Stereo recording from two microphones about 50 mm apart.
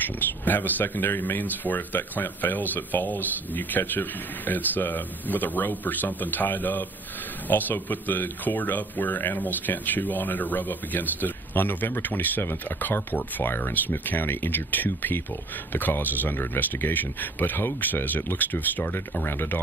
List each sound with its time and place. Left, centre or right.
0.0 s speech: left
19.2 s speech: left